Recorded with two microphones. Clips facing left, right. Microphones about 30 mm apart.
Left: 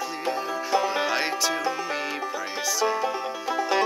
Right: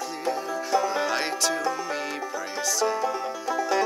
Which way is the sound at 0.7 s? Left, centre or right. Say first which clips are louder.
Even; left.